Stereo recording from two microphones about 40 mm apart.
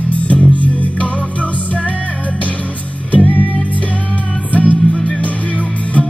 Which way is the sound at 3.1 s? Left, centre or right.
Left.